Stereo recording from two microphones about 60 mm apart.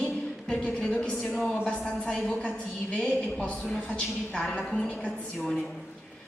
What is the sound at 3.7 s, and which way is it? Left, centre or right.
A woman's voice, centre.